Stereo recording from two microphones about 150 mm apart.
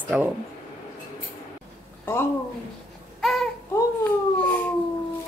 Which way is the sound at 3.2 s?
Centre (ahead or behind).